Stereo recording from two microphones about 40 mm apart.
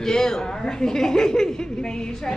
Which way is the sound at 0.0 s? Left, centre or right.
Centre.